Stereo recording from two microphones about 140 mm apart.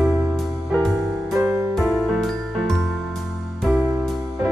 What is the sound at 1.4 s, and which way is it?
Music, 20° right (ahead or behind).